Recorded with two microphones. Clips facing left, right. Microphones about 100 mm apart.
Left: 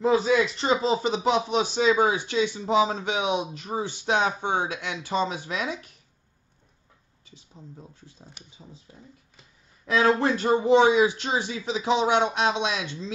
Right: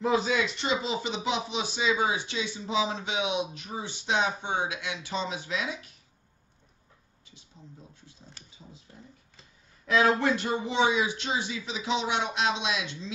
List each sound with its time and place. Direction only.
0.0 s speech: 35° left (ahead or behind)
8.4 s speech: 15° left (ahead or behind)
9.8 s a man's voice: 30° left (ahead or behind)